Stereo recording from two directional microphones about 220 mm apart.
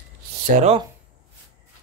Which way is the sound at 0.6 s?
30° right (ahead or behind).